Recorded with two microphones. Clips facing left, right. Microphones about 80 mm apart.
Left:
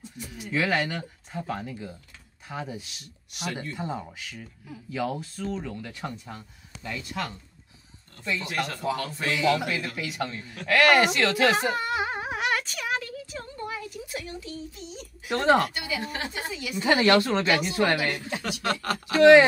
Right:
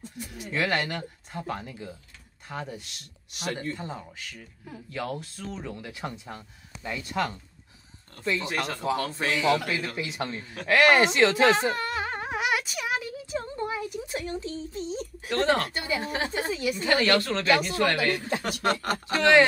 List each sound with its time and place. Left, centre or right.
0.5 s speech: centre
8.2 s speech: right
11.7 s a sound: centre
12.4 s a sound: centre
13.4 s a sound: right
15.2 s speech: centre
15.7 s a woman's voice: right
16.9 s speech: centre
18.7 s speech: right
19.1 s speech: centre